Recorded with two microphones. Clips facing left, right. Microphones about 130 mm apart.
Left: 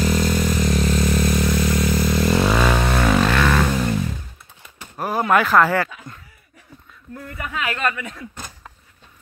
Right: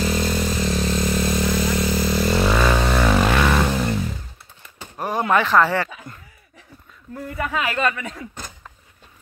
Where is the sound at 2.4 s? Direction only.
Centre (ahead or behind).